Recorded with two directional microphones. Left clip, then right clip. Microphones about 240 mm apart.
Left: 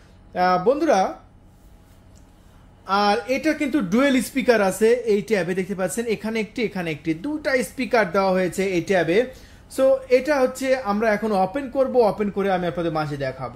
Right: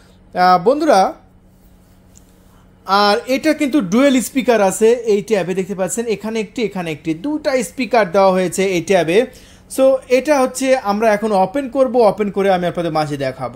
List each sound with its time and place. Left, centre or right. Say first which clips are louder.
0.3 s speech: right 7 dB; right
2.8 s speech: right 6 dB; right